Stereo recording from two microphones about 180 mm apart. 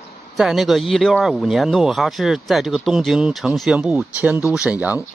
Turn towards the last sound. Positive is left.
turn(degrees=-10)  # may be behind; listen again after turning